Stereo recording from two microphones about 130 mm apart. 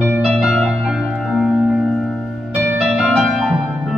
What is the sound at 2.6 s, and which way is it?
Harp, 10° right (ahead or behind).